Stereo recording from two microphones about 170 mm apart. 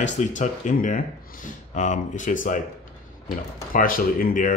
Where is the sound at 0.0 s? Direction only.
45° left (ahead or behind).